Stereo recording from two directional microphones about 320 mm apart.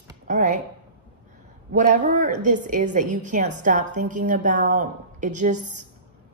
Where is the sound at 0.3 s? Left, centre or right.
Right.